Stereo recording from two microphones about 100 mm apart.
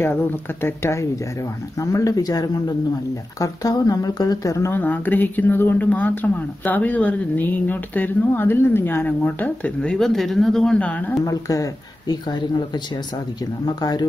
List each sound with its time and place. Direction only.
0.0 s speech: 20° left (ahead or behind)
11.2 s speech: 35° left (ahead or behind)